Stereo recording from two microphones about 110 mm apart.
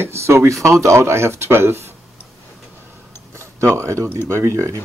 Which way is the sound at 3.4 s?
25° right (ahead or behind).